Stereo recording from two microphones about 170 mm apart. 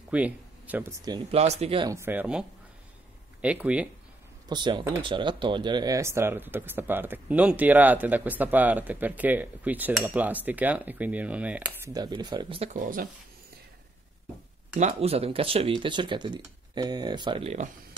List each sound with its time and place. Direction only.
0.1 s speech: 10° right (ahead or behind)
1.3 s speech: 40° right (ahead or behind)
1.9 s speech: 15° right (ahead or behind)
4.5 s speech: 25° right (ahead or behind); by 11.9 s 10° right (ahead or behind)
11.9 s speech: 25° right (ahead or behind)
12.7 s speech: 50° right (ahead or behind)
14.8 s speech: 35° right (ahead or behind)